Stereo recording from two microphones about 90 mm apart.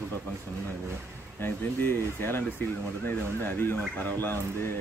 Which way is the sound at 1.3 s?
25° left (ahead or behind).